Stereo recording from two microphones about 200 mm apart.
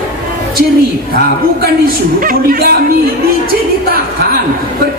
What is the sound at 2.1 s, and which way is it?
Speech, 45° right (ahead or behind).